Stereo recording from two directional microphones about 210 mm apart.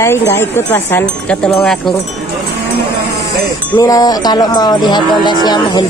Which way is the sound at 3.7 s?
20° left (ahead or behind).